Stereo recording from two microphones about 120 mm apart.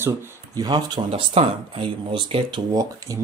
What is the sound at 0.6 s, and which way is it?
Speech, 35° right (ahead or behind).